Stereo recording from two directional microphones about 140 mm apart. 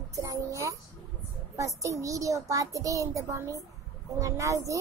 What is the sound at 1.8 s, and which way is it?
Speech, 20° right (ahead or behind).